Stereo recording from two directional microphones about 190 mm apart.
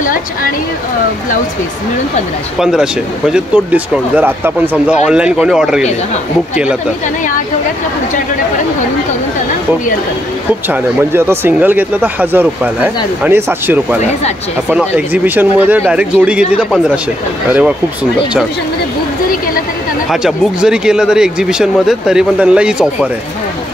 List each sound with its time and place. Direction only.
0.0 s speech: 45° left (ahead or behind)
2.6 s speech: 5° right (ahead or behind)
10.7 s speech: 10° right (ahead or behind)
20.1 s speech: centre (ahead or behind)